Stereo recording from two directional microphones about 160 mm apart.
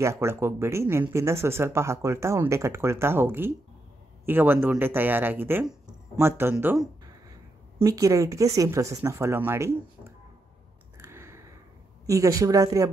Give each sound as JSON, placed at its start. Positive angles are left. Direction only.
{"t": 0.0, "sound": "speech", "side_deg": -15}
{"t": 7.8, "sound": "speech", "side_deg": -20}
{"t": 11.0, "sound": "a sound", "side_deg": -15}
{"t": 12.1, "sound": "speech", "side_deg": -20}